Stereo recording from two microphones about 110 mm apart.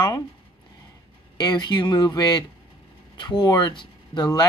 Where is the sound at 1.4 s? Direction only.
40° left (ahead or behind).